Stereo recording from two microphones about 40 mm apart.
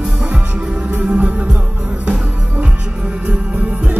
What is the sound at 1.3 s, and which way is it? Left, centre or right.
Music, right.